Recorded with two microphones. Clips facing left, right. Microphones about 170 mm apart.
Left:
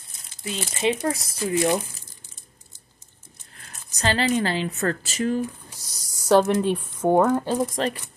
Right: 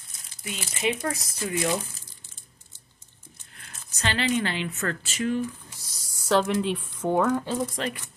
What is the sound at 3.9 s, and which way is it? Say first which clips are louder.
A woman's voice: left 4 dB; 40° left (ahead or behind).